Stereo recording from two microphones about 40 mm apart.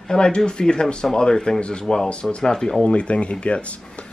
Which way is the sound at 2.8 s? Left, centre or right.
Left.